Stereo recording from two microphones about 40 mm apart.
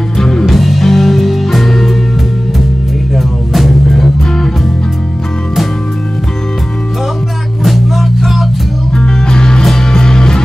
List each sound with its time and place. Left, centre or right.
0.2 s music: centre
0.5 s music: centre
3.2 s music: centre
7.6 s music: centre
8.9 s music: centre
9.6 s music: centre